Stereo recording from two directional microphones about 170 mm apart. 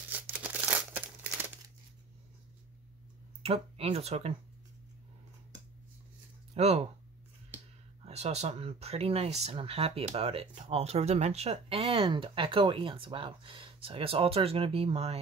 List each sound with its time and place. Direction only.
0.1 s crumpling: 10° right (ahead or behind)
3.4 s speech: 35° right (ahead or behind)
6.5 s speech: 35° right (ahead or behind)
8.0 s speech: 40° right (ahead or behind)